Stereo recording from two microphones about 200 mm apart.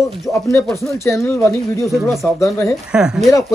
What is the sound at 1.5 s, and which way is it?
Speech, centre (ahead or behind).